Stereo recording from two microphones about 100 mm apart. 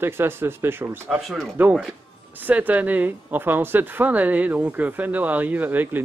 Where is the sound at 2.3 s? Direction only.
20° right (ahead or behind).